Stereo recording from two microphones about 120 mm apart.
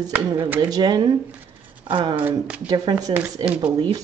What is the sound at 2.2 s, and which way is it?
Speech, 10° right (ahead or behind).